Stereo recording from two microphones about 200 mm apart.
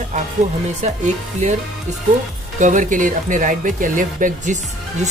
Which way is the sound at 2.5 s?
40° right (ahead or behind).